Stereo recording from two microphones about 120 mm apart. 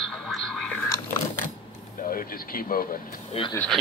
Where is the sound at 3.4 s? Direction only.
50° left (ahead or behind).